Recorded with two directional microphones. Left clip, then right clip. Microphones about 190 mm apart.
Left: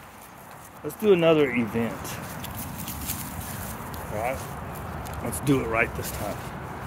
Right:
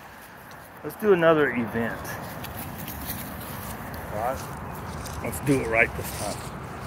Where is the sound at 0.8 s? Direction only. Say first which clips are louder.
Even; 40° left (ahead or behind).